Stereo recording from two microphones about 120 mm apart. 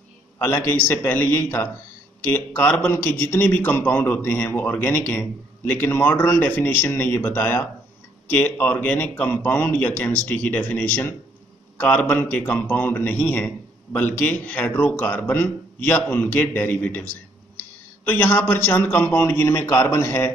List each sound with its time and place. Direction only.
0.4 s a man's voice: 20° left (ahead or behind)
18.0 s a man's voice: 15° left (ahead or behind)